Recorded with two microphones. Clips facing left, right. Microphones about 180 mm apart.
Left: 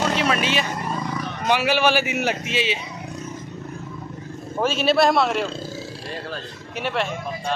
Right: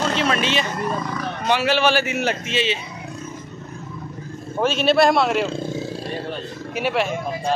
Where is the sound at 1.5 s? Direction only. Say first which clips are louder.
Right 1 dB; 10° left (ahead or behind).